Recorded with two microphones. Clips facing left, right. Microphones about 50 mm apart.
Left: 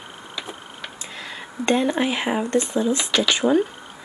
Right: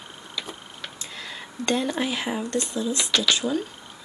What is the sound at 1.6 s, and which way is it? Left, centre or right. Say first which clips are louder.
Speech: left 5 dB; left.